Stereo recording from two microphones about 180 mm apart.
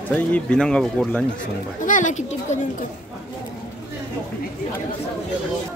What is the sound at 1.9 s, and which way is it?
Speech, 45° left (ahead or behind).